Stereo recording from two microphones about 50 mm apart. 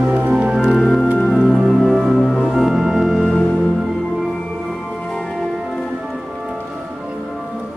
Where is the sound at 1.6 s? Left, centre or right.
Centre.